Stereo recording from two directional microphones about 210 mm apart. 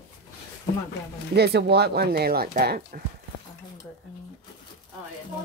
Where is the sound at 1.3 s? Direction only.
50° right (ahead or behind).